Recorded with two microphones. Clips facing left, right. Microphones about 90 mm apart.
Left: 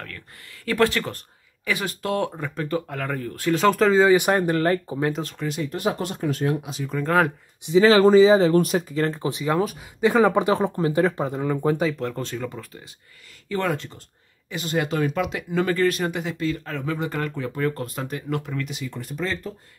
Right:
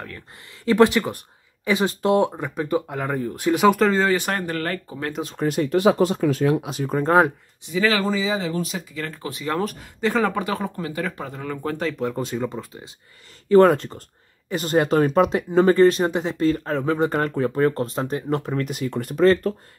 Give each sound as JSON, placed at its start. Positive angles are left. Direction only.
{"t": 0.7, "sound": "speech", "side_deg": -20}
{"t": 3.7, "sound": "speech", "side_deg": 0}
{"t": 4.0, "sound": "speech", "side_deg": 15}
{"t": 5.4, "sound": "speech", "side_deg": -55}
{"t": 5.7, "sound": "speech", "side_deg": -90}
{"t": 6.5, "sound": "speech", "side_deg": -80}
{"t": 7.0, "sound": "speech", "side_deg": -25}
{"t": 7.6, "sound": "speech", "side_deg": 25}
{"t": 8.5, "sound": "speech", "side_deg": 55}
{"t": 8.9, "sound": "speech", "side_deg": 30}
{"t": 9.6, "sound": "speech", "side_deg": 5}
{"t": 12.0, "sound": "speech", "side_deg": -15}
{"t": 13.5, "sound": "speech", "side_deg": -40}
{"t": 18.7, "sound": "speech", "side_deg": -55}